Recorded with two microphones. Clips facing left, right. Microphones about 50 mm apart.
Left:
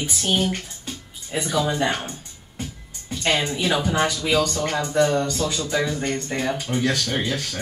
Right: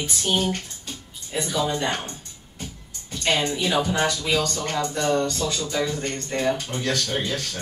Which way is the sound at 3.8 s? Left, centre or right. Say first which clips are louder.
Left 2 dB; centre.